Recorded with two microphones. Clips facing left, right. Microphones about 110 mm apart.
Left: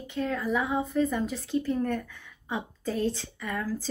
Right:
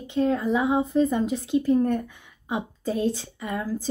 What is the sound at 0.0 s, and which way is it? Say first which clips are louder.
A woman's voice: right 7 dB; 25° right (ahead or behind).